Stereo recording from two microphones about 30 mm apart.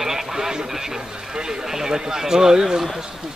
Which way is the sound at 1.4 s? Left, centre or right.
Right.